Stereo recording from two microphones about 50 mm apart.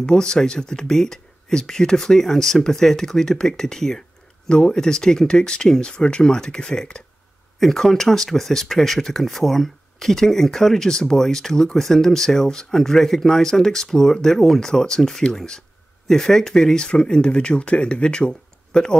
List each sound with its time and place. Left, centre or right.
0.0 s speech: centre